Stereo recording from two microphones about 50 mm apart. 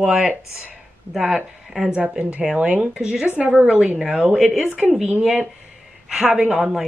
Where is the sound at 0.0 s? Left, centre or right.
Centre.